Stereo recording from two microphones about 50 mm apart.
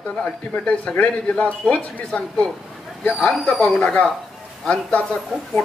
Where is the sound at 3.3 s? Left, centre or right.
Centre.